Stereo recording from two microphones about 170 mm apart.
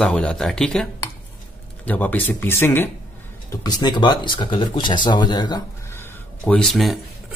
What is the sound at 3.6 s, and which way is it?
Speech, 25° left (ahead or behind).